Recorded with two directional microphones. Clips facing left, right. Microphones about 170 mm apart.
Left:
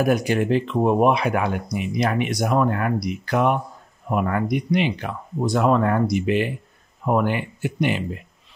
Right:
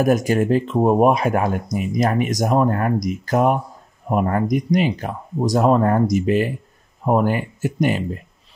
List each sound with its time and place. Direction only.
0.0 s speech: 45° right (ahead or behind)